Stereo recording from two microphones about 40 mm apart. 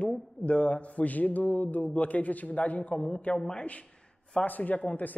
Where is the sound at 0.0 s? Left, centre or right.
Left.